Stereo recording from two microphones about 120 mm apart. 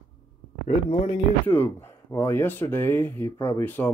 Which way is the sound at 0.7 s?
60° left (ahead or behind).